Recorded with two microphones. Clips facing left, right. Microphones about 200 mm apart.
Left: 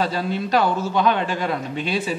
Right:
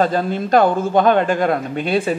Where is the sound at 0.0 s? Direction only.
50° right (ahead or behind).